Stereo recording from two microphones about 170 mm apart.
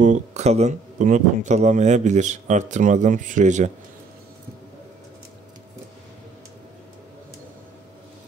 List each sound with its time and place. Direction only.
0.0 s speech: 45° right (ahead or behind)